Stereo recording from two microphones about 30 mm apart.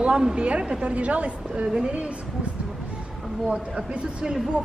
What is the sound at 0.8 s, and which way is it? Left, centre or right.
Speech, right.